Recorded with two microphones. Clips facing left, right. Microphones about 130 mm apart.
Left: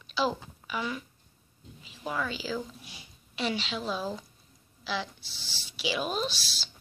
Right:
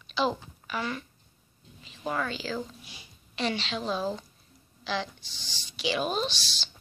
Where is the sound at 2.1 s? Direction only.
5° left (ahead or behind).